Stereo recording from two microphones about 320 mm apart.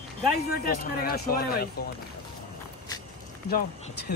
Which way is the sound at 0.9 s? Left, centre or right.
Left.